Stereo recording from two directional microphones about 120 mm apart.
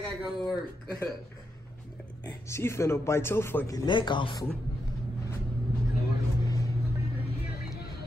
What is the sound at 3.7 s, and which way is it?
Speech, 40° left (ahead or behind).